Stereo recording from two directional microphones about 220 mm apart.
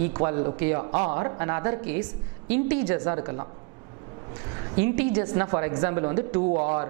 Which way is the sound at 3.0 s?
20° right (ahead or behind).